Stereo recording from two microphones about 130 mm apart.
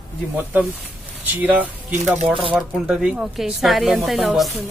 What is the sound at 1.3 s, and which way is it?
Speech, 15° right (ahead or behind).